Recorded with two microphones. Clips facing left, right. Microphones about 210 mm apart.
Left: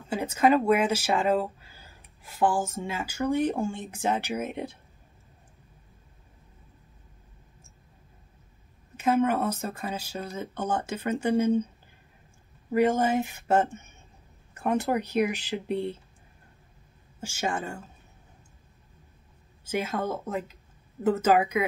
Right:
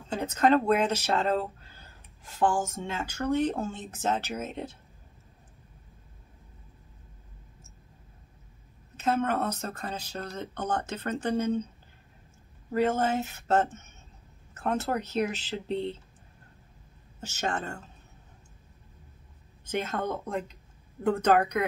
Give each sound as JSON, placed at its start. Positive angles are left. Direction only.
{"t": 0.1, "sound": "speech", "side_deg": 10}
{"t": 8.9, "sound": "speech", "side_deg": 10}
{"t": 12.7, "sound": "speech", "side_deg": 15}
{"t": 17.2, "sound": "speech", "side_deg": 10}
{"t": 19.6, "sound": "speech", "side_deg": 10}